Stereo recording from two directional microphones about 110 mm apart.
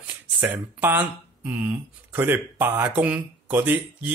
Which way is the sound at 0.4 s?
15° right (ahead or behind).